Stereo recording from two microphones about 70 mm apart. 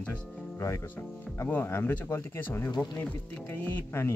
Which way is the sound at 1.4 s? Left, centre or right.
Left.